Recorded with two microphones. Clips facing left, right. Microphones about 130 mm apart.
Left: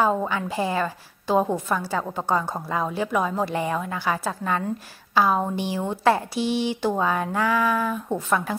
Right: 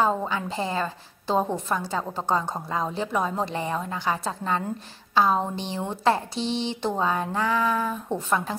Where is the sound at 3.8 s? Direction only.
20° right (ahead or behind).